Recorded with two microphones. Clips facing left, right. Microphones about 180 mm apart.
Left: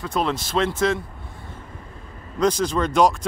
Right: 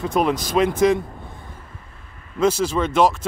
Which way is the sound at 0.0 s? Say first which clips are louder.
Right 4 dB; 15° right (ahead or behind).